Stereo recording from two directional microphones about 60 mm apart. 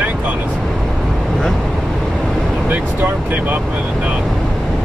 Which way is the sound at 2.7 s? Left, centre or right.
Right.